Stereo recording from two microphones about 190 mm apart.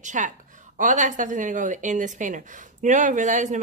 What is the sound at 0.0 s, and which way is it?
A woman's voice, 40° right (ahead or behind).